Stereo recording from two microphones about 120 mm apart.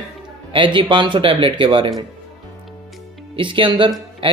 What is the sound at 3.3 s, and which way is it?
Speech, 45° right (ahead or behind).